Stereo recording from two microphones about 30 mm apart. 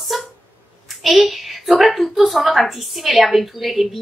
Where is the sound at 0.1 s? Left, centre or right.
Centre.